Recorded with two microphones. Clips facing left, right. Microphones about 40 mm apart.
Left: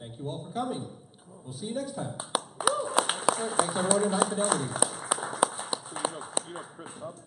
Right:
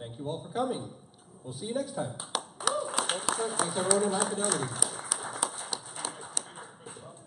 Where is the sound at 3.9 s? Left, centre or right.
Centre.